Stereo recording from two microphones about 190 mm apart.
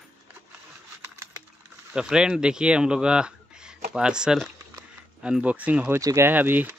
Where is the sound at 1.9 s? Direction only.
5° right (ahead or behind).